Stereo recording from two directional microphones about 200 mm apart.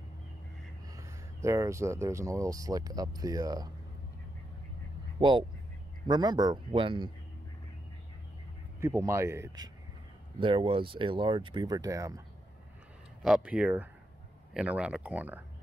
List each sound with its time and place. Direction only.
0.9 s speech: 15° right (ahead or behind)
5.2 s speech: 25° right (ahead or behind)
8.8 s speech: 15° right (ahead or behind)
10.4 s speech: 25° right (ahead or behind)
13.2 s speech: 5° right (ahead or behind)